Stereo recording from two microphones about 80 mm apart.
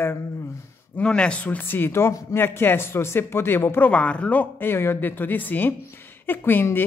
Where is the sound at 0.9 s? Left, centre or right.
Centre.